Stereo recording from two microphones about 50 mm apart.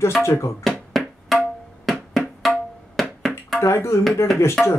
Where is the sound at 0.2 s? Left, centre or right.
Left.